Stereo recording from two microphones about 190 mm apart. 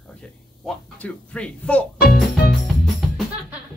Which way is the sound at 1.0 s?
5° left (ahead or behind).